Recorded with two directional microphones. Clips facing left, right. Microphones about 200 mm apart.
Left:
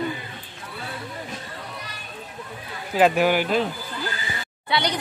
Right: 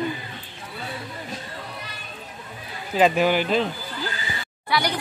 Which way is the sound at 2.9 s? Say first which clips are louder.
Even; 10° left (ahead or behind).